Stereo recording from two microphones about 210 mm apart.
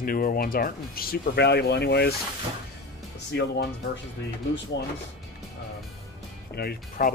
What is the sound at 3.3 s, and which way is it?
Speech, 55° left (ahead or behind).